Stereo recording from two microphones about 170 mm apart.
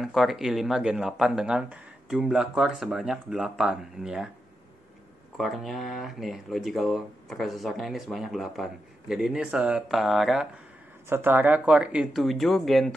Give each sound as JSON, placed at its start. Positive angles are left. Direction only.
{"t": 0.0, "sound": "speech", "side_deg": 0}
{"t": 5.4, "sound": "speech", "side_deg": 0}
{"t": 11.1, "sound": "speech", "side_deg": -15}